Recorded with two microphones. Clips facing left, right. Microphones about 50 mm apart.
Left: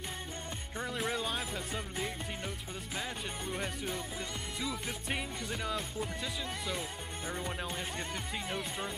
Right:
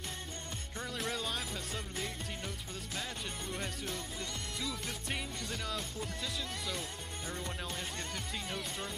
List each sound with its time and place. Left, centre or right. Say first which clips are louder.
0.7 s music: left 3 dB; centre